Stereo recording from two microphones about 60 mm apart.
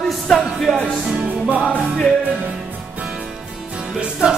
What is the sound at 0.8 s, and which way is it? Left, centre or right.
Music, centre.